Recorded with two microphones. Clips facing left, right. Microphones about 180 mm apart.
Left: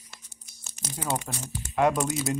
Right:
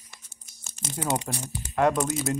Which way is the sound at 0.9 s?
15° right (ahead or behind).